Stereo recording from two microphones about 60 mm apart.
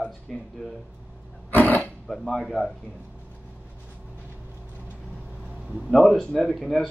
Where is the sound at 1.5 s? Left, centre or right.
Left.